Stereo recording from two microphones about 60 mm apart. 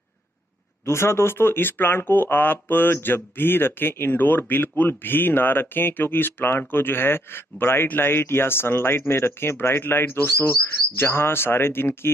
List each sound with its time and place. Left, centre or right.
0.8 s speech: left